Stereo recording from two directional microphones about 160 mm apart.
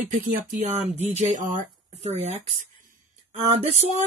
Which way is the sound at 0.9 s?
45° right (ahead or behind).